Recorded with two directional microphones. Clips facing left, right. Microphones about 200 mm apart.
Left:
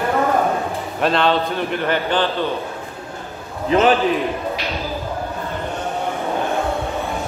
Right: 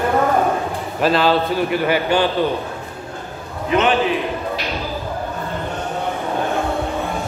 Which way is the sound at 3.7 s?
35° left (ahead or behind).